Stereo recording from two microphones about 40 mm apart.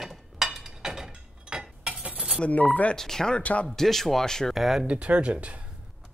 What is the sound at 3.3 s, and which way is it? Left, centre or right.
Speech, left.